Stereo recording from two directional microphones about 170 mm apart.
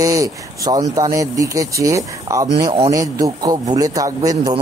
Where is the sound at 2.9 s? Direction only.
20° right (ahead or behind).